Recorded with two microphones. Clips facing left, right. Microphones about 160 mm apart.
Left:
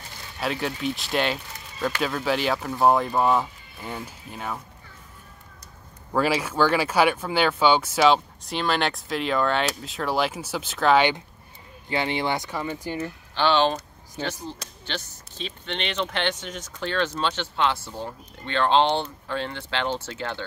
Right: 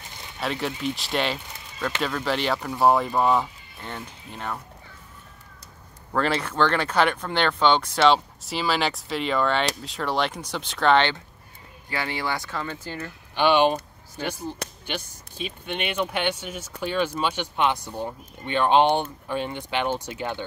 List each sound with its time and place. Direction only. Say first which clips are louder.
0.4 s speech: left 1 dB; centre (ahead or behind)
6.1 s speech: left 1 dB; 10° left (ahead or behind)
11.9 s speech: left 3 dB; 20° left (ahead or behind)
13.3 s speech: right 2 dB; 15° right (ahead or behind)
14.2 s speech: even; 15° left (ahead or behind)
14.9 s speech: left 2 dB; 10° right (ahead or behind)